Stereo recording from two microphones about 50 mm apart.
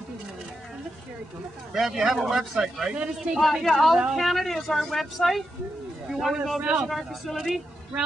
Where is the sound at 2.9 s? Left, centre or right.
Right.